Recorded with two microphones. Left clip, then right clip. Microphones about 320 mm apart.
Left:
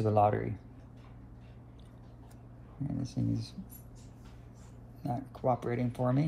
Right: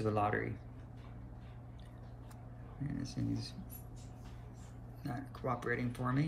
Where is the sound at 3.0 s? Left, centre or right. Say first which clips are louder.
Left 4 dB; centre.